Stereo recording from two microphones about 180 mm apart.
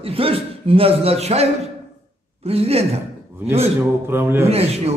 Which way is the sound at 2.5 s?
35° right (ahead or behind).